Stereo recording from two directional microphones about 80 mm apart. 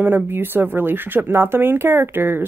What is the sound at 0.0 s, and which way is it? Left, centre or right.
Speech, right.